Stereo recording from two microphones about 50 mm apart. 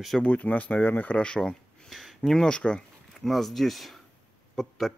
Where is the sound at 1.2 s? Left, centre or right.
Centre.